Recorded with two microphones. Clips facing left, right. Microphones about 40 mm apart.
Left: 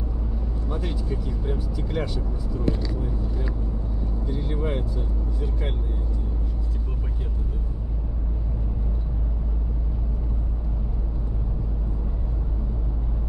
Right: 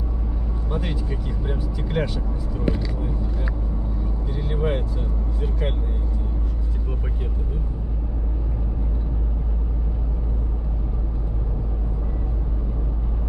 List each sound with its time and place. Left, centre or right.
0.7 s vehicle: right
1.0 s speech: right
4.3 s speech: right